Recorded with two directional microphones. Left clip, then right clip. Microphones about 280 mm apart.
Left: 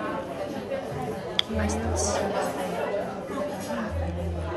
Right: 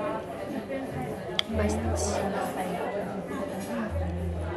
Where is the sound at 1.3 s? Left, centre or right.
Centre.